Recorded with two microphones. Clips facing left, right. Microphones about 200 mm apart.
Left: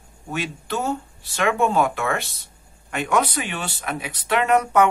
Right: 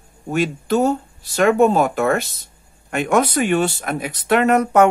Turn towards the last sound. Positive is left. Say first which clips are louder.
# right 4 dB
turn(degrees=-45)  # may be behind; listen again after turning